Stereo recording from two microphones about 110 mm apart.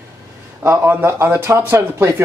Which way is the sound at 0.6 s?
25° right (ahead or behind).